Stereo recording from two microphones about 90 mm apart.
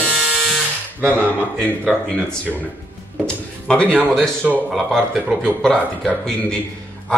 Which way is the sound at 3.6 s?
15° left (ahead or behind).